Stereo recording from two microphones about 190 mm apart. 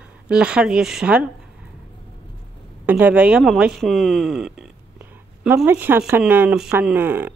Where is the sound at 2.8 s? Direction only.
10° right (ahead or behind).